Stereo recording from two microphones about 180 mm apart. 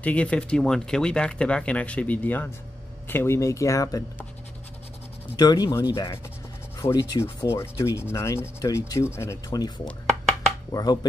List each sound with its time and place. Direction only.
0.0 s rub: 5° left (ahead or behind)
5.4 s speech: 20° left (ahead or behind)
6.8 s rub: 15° left (ahead or behind)
10.7 s speech: 20° left (ahead or behind)